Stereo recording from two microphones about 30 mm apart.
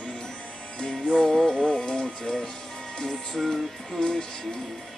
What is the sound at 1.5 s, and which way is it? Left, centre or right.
Music, left.